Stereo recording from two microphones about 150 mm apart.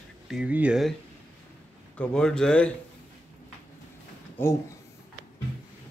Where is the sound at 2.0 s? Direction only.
5° left (ahead or behind).